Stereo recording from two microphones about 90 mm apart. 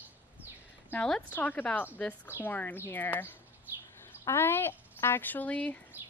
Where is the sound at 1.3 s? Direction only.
20° left (ahead or behind).